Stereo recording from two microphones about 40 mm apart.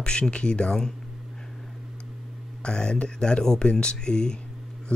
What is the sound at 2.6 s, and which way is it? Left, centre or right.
A man's voice, left.